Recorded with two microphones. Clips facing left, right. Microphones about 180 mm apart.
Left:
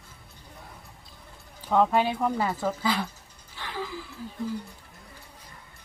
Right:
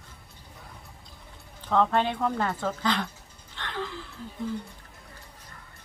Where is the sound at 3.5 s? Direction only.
5° left (ahead or behind).